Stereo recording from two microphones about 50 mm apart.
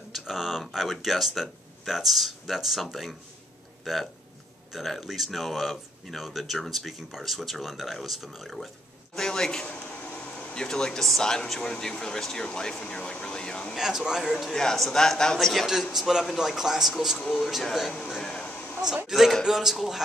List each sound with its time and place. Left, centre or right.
0.1 s speech: centre
9.1 s a man's voice: centre
10.0 s a sound: left
10.6 s speech: centre
13.7 s speech: centre
14.4 s speech: centre
15.6 s speech: centre
17.9 s speech: centre
19.0 s speech: centre